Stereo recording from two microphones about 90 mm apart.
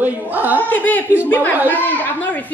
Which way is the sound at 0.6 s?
20° left (ahead or behind).